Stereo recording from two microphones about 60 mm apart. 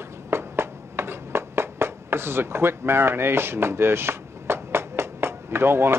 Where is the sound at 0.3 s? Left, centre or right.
Right.